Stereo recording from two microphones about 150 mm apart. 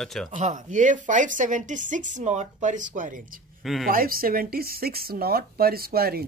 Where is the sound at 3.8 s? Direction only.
75° right (ahead or behind); by 6.2 s 90° right.